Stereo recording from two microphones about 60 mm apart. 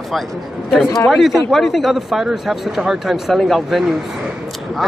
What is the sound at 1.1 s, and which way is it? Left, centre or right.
Speech, centre.